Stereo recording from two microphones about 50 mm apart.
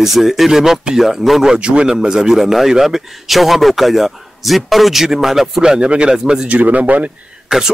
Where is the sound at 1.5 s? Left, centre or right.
Right.